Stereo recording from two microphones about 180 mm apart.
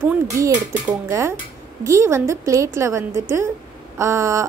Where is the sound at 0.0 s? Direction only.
15° right (ahead or behind).